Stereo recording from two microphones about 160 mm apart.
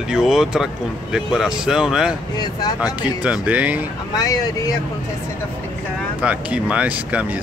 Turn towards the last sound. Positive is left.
turn(degrees=-10)  # may be behind; listen again after turning